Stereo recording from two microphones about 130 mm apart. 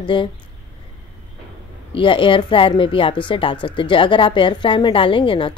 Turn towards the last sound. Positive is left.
turn(degrees=40)  # may be behind; listen again after turning